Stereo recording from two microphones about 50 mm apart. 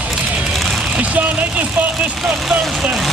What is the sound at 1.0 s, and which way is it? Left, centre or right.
Speech, right.